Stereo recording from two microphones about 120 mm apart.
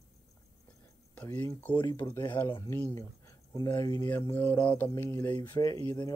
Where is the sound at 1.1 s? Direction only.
15° left (ahead or behind).